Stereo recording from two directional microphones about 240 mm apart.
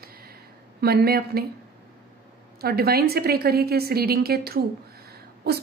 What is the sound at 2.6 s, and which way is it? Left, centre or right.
A woman's voice, right.